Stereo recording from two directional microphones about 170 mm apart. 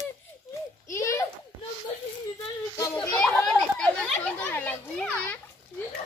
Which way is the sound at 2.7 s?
20° left (ahead or behind).